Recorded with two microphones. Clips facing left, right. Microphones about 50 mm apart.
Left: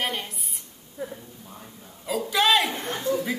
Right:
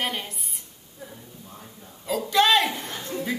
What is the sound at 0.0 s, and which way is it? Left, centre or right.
Speech, centre.